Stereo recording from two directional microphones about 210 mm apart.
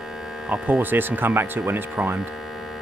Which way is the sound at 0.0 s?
Centre (ahead or behind).